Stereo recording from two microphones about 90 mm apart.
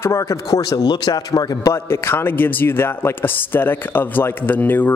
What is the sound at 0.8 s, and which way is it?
Speech, 50° left (ahead or behind).